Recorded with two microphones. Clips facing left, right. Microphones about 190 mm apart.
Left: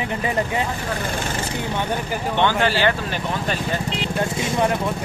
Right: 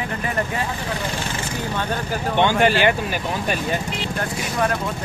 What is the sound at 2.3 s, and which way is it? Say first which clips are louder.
Speech: right 3 dB; 15° right (ahead or behind).